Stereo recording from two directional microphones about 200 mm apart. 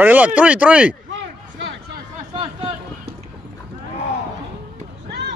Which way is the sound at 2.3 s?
30° right (ahead or behind).